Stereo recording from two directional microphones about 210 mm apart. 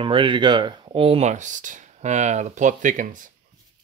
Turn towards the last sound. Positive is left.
turn(degrees=-40)  # may be behind; listen again after turning